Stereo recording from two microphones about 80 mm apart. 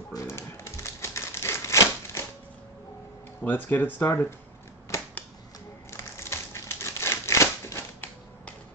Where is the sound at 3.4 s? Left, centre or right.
Left.